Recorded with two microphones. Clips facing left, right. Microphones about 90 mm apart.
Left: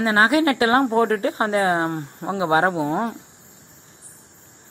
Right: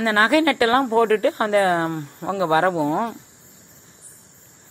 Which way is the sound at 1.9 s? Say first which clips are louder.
Even; 35° left (ahead or behind).